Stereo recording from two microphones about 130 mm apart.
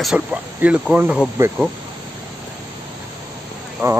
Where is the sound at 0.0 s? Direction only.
10° right (ahead or behind).